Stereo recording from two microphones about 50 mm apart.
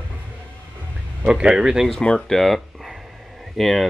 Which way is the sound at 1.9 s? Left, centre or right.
Centre.